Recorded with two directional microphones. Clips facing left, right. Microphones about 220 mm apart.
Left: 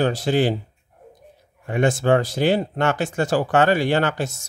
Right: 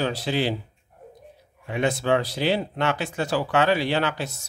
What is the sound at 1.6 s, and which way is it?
Speech, 50° left (ahead or behind).